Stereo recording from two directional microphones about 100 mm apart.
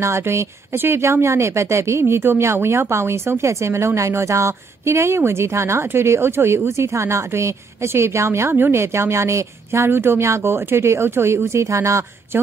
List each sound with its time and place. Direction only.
0.0 s speech: 30° right (ahead or behind)